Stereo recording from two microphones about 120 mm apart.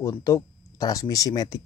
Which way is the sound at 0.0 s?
30° left (ahead or behind).